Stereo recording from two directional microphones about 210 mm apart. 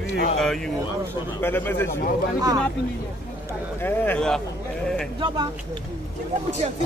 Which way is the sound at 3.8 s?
10° left (ahead or behind).